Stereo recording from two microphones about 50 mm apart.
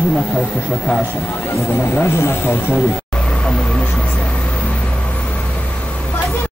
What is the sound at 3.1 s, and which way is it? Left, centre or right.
Vehicle, centre.